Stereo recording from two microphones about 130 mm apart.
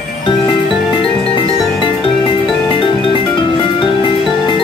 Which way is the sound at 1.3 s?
40° left (ahead or behind).